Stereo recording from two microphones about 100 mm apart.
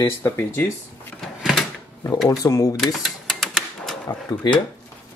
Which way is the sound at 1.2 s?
Centre (ahead or behind).